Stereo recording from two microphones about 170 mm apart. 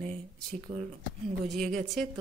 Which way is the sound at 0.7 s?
35° right (ahead or behind).